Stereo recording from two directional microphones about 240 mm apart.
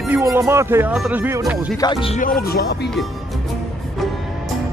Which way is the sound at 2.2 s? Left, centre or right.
Left.